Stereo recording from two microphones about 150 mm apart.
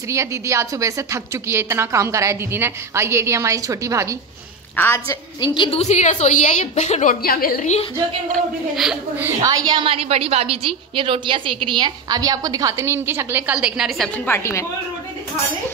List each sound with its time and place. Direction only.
0.1 s a woman's voice: 20° right (ahead or behind)
4.7 s a woman's voice: 15° left (ahead or behind)
5.8 s a woman's voice: 50° left (ahead or behind)
7.2 s a woman's voice: 80° left
9.2 s a woman's voice: 20° right (ahead or behind); by 14.1 s centre (ahead or behind)
14.2 s a woman's voice: 20° left (ahead or behind)